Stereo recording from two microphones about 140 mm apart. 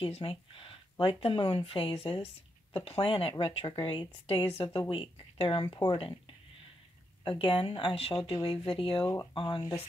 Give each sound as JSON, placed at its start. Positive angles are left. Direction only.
{"t": 0.0, "sound": "speech", "side_deg": 40}